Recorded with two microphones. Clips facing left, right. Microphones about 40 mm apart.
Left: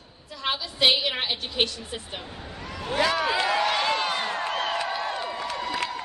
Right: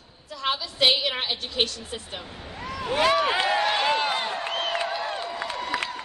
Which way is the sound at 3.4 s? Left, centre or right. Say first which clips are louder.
Right 1 dB; right.